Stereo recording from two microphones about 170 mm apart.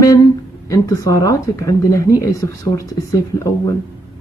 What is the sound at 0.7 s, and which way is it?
A woman's voice, 20° left (ahead or behind).